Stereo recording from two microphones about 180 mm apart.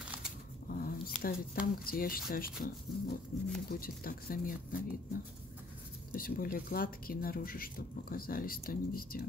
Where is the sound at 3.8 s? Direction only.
55° left (ahead or behind).